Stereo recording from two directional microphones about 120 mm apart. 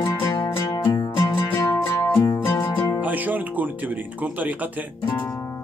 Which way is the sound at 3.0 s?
15° right (ahead or behind).